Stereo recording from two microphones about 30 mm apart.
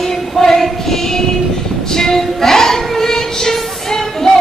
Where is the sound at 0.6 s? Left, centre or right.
Centre.